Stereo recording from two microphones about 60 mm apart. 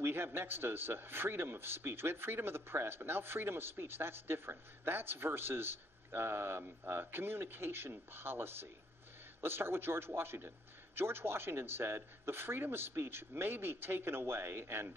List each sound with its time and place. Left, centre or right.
0.0 s a man's voice: right